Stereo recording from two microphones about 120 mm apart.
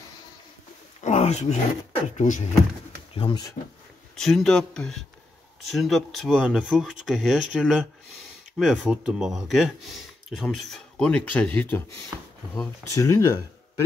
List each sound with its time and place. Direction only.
1.0 s speech: 70° left (ahead or behind)
2.1 s speech: 90° left
3.2 s speech: 45° left (ahead or behind)
4.2 s speech: 5° left (ahead or behind)
12.1 s speech: 20° right (ahead or behind)
12.9 s speech: 25° left (ahead or behind)